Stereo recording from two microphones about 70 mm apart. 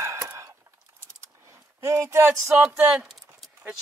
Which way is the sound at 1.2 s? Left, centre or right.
Right.